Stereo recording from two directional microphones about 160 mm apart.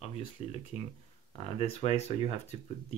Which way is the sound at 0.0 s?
40° left (ahead or behind).